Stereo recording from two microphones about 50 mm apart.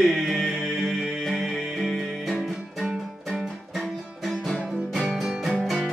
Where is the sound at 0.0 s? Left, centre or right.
Centre.